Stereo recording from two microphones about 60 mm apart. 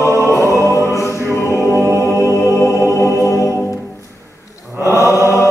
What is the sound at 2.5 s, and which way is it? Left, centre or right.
Music, left.